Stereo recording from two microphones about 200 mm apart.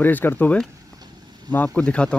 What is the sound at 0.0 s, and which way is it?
Speech, 10° left (ahead or behind).